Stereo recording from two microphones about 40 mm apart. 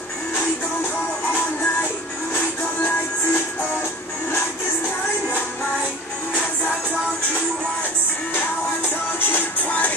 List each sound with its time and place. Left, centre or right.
9.3 s music: left